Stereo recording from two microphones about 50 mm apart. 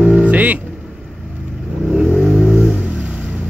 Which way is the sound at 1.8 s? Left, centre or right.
Right.